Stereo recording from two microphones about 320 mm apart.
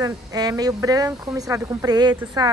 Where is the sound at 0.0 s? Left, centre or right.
Centre.